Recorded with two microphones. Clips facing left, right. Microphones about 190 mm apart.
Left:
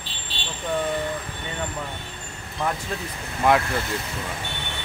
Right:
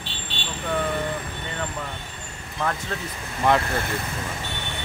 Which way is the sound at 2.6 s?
15° left (ahead or behind).